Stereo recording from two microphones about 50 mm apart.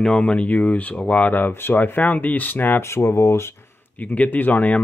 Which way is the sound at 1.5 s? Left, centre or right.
Left.